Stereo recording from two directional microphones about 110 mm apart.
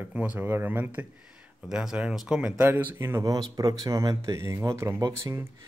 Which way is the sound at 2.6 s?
15° right (ahead or behind).